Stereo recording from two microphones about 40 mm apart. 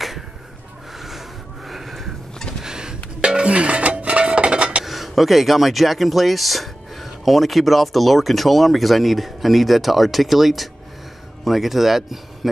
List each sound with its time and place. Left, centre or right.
0.9 s a sound: centre
2.6 s dishes: centre
4.8 s speech: centre